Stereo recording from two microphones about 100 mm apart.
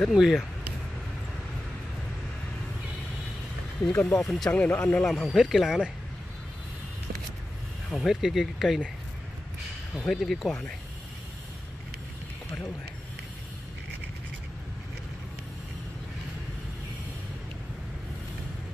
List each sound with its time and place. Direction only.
0.1 s speech: 5° right (ahead or behind)
3.9 s speech: 25° left (ahead or behind)
4.2 s speech: 5° left (ahead or behind)
4.5 s speech: 15° left (ahead or behind)
5.1 s speech: 5° right (ahead or behind)
7.9 s speech: 5° right (ahead or behind)
10.0 s speech: centre (ahead or behind)